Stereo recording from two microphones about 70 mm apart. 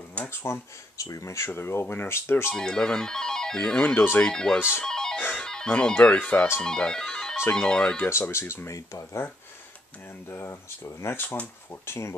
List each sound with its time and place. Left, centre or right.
0.2 s speech: left
2.5 s speech: centre
3.9 s speech: left
4.2 s speech: centre
4.8 s music: centre
5.7 s speech: centre
6.1 s speech: left
6.6 s speech: centre
8.0 s speech: left
10.3 s speech: left
11.1 s speech: left